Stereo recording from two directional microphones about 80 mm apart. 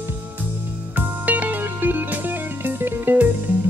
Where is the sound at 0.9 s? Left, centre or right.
Right.